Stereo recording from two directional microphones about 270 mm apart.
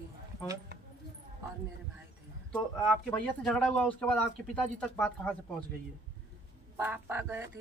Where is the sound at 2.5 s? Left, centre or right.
Centre.